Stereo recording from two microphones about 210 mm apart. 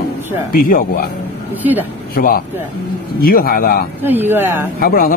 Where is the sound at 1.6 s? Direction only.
10° right (ahead or behind).